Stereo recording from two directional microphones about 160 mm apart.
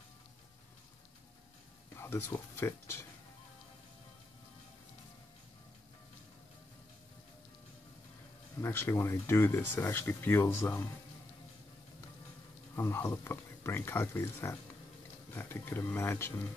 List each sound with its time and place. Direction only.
2.0 s speech: 15° left (ahead or behind)
8.5 s speech: 15° left (ahead or behind)
12.7 s speech: 15° left (ahead or behind)